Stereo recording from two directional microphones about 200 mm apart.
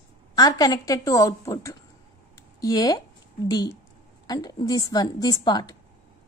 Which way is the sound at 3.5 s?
15° left (ahead or behind).